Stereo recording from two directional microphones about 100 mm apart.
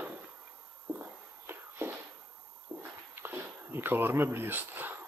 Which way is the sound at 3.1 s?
20° right (ahead or behind).